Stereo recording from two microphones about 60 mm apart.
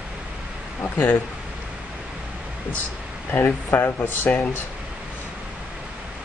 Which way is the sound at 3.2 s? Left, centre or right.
Left.